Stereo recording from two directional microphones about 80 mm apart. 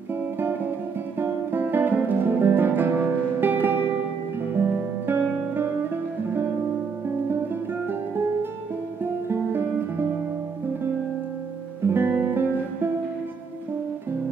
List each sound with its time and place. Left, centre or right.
1.2 s guitar: right
4.6 s music: right
9.3 s music: right
11.9 s music: right